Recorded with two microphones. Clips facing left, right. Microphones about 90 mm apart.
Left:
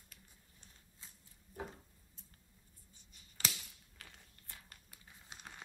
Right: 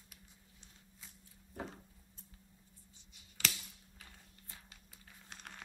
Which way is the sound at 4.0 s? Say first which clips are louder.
Left 2 dB; 65° left (ahead or behind).